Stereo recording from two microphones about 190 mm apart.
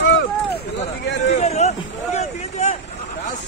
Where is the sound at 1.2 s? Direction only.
35° left (ahead or behind).